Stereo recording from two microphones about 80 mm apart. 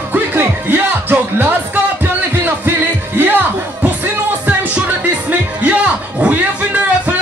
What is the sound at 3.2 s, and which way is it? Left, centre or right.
Music, right.